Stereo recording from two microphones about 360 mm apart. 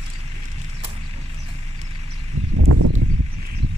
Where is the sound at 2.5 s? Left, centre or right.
Right.